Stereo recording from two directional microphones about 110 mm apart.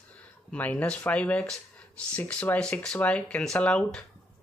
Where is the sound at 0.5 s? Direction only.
15° left (ahead or behind).